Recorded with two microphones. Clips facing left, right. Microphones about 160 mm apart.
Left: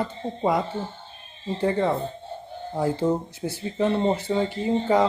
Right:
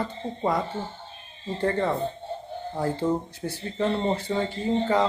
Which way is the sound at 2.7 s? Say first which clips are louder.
Left 3 dB; 15° left (ahead or behind).